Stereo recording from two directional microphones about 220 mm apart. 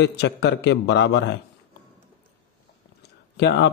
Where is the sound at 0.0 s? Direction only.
50° left (ahead or behind).